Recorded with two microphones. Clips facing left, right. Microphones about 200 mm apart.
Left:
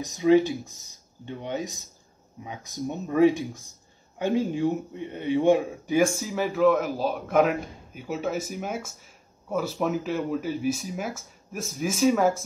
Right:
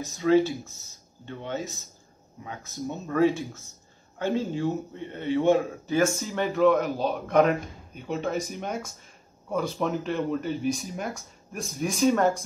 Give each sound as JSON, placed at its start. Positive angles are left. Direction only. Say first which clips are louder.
{"t": 0.0, "sound": "a man's voice", "louder": "left 2 dB", "side_deg": 15}